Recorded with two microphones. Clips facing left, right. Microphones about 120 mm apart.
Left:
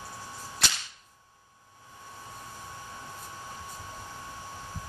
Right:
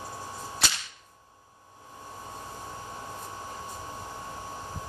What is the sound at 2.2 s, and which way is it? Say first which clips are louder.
Vehicle: right 4 dB; 30° right (ahead or behind).